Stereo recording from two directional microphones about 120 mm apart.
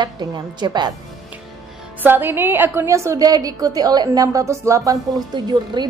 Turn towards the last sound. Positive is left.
turn(degrees=-35)  # may be behind; listen again after turning